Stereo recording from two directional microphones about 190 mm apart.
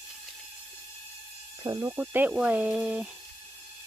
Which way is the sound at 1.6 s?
15° right (ahead or behind).